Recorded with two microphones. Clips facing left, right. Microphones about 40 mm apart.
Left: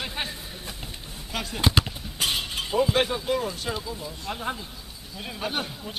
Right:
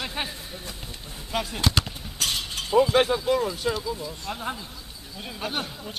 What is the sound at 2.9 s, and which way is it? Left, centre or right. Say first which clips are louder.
Speech: right 3 dB; centre.